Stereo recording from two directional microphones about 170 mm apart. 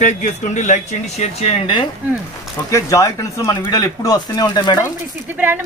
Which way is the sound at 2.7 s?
20° left (ahead or behind).